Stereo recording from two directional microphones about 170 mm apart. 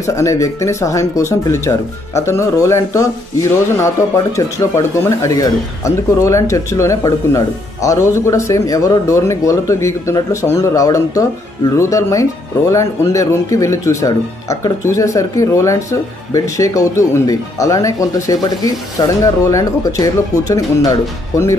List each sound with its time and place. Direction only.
0.0 s speech: 20° left (ahead or behind)
4.4 s speech: 20° left (ahead or behind)